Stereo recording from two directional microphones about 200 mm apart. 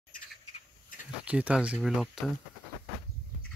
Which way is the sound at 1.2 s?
5° right (ahead or behind).